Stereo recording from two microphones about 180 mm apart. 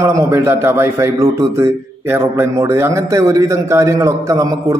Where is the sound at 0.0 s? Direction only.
15° right (ahead or behind).